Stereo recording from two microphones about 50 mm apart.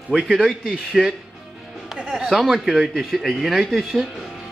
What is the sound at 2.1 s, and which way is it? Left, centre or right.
Speech, centre.